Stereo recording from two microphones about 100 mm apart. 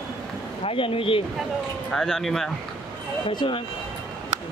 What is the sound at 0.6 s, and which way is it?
Speech, 70° left (ahead or behind).